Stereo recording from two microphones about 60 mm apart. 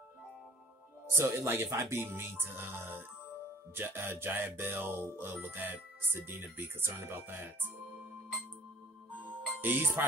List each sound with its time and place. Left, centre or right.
1.1 s speech: right
9.6 s speech: right